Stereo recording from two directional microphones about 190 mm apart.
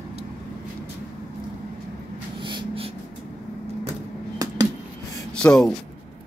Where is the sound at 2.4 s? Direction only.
25° right (ahead or behind).